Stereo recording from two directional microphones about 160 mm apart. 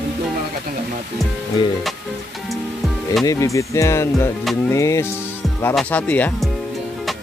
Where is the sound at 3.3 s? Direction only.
20° left (ahead or behind).